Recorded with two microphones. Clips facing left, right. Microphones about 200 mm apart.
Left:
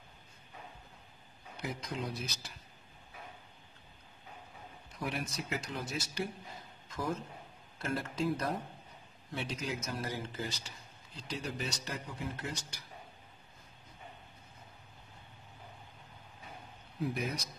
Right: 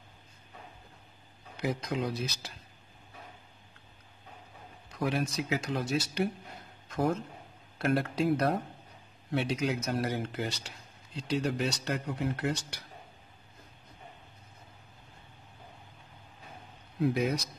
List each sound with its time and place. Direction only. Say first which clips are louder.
1.6 s speech: right 7 dB; 80° right
4.9 s speech: right 8 dB; 80° right
17.0 s speech: right 8 dB; 70° right (ahead or behind)